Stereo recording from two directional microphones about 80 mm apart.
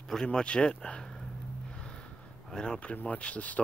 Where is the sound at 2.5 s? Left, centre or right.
Centre.